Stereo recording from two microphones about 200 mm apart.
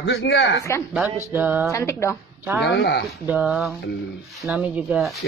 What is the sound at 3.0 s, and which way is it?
Speech, 5° right (ahead or behind).